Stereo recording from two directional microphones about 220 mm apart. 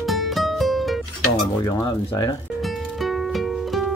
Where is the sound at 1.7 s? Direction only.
15° left (ahead or behind).